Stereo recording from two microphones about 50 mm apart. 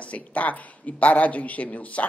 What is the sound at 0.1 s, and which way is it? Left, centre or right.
A woman's voice, left.